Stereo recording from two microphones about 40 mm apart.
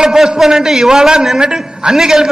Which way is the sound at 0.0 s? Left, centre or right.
Centre.